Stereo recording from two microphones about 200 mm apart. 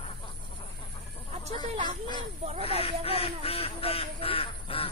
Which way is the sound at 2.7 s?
30° left (ahead or behind).